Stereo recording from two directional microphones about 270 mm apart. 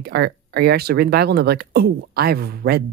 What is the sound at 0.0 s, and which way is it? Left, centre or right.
Speech, right.